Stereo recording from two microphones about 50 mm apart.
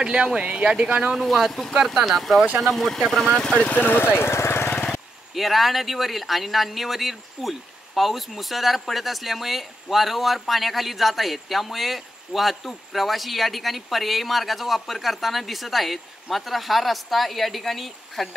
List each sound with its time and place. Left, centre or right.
0.0 s speech: centre
1.2 s speech: centre
3.3 s speech: centre
3.8 s speech: left
5.3 s speech: centre